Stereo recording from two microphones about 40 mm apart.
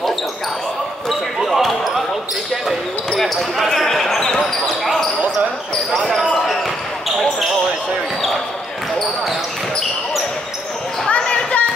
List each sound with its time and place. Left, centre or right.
1.4 s basketball bounce: centre
3.2 s speech: centre
3.6 s basketball bounce: centre
5.9 s basketball bounce: centre
11.1 s a sound: left